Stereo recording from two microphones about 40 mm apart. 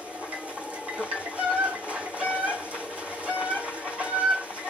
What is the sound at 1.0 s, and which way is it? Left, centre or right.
Bird, right.